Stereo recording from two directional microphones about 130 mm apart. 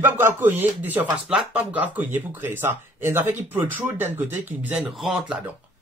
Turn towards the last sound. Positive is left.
turn(degrees=-10)  # may be behind; listen again after turning